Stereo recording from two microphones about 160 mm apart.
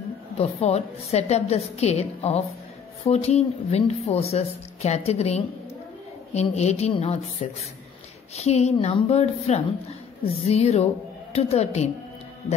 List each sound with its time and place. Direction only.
0.4 s a woman's voice: 45° left (ahead or behind)